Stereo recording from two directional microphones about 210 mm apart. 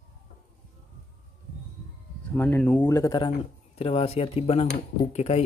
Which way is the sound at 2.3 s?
10° left (ahead or behind).